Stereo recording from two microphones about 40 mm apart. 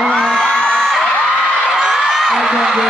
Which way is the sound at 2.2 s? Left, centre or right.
Centre.